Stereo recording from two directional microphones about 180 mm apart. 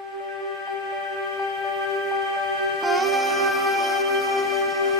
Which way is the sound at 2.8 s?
Centre (ahead or behind).